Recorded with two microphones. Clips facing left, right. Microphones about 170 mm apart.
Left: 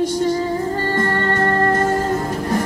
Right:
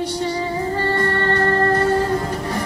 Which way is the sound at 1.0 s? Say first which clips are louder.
Left 1 dB; 45° left (ahead or behind).